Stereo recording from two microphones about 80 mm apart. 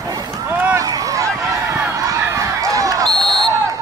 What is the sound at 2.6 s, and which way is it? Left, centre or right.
Basketball bounce, right.